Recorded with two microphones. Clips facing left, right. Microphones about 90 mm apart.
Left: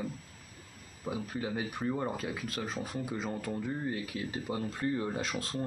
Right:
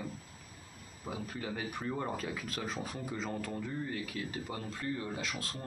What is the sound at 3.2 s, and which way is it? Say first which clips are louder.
Speech: left 1 dB; 10° left (ahead or behind).